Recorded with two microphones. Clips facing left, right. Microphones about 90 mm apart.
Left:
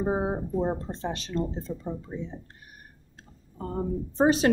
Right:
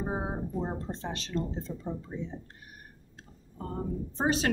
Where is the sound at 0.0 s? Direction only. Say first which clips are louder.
Left 6 dB; 20° left (ahead or behind).